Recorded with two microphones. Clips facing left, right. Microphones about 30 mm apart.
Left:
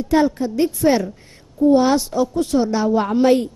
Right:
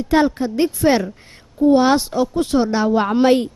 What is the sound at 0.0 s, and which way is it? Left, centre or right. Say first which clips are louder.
A woman's voice: right 1 dB; right.